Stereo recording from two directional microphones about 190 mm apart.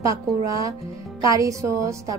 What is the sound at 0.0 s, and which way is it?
Speech, 15° right (ahead or behind).